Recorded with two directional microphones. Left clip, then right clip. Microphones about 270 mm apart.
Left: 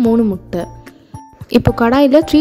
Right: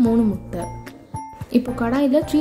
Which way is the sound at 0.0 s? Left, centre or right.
Left.